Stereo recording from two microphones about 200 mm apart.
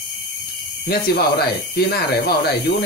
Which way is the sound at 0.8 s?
50° left (ahead or behind).